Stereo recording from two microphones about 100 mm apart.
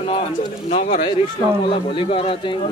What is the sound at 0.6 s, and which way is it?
Speech, 85° left.